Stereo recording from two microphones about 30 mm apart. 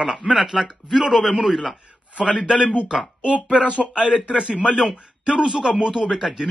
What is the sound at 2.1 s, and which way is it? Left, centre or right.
Speech, right.